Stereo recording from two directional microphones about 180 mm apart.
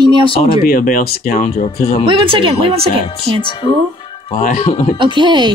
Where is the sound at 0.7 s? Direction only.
50° left (ahead or behind).